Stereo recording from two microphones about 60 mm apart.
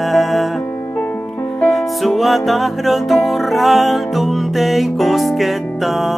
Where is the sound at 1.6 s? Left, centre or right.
Centre.